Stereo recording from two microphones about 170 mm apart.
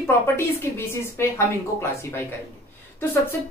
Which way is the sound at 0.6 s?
15° left (ahead or behind).